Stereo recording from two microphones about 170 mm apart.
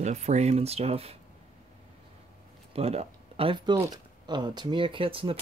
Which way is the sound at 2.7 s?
35° right (ahead or behind).